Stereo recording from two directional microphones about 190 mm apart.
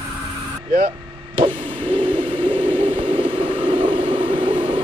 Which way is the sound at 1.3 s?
25° right (ahead or behind).